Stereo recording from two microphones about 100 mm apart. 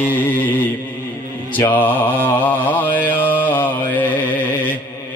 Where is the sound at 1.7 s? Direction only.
20° left (ahead or behind).